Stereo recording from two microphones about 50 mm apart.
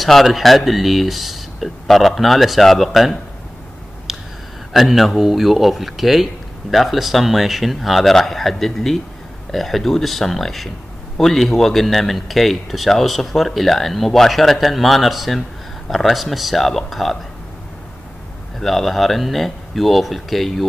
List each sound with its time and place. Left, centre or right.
0.0 s speech: centre
4.7 s speech: centre
18.6 s speech: centre